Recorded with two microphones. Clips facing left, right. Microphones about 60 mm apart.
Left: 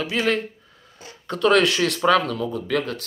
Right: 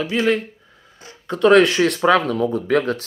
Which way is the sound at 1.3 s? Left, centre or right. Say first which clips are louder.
Right 5 dB; right.